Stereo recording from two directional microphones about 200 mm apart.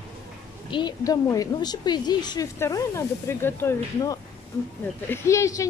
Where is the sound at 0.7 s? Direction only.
20° left (ahead or behind).